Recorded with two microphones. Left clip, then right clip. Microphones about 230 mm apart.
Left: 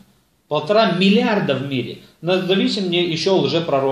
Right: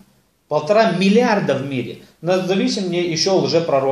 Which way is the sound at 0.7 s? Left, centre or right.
Centre.